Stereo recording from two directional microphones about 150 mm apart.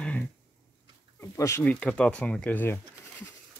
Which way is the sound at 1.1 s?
20° left (ahead or behind).